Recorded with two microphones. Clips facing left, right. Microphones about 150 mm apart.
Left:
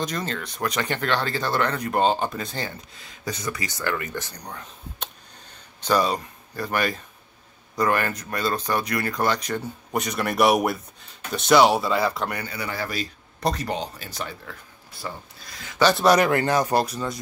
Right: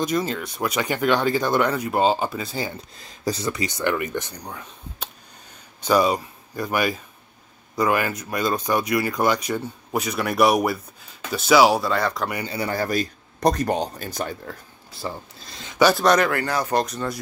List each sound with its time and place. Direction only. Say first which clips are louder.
0.0 s speech: right 5 dB; 10° right (ahead or behind)
3.0 s speech: right 7 dB; 35° right (ahead or behind); by 4.4 s 20° right (ahead or behind)
4.5 s speech: right 1 dB; 5° right (ahead or behind)
12.4 s a man's voice: right 6 dB; 35° right (ahead or behind)
14.9 s speech: right 4 dB; 25° right (ahead or behind)
16.0 s speech: even; 10° left (ahead or behind)
16.3 s speech: left 3 dB; 20° left (ahead or behind); by 17.2 s 5° left (ahead or behind)